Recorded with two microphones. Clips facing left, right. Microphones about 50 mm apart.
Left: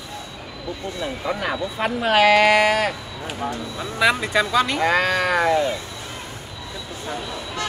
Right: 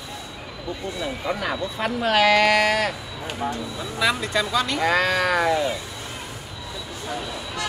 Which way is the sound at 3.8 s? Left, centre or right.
Left.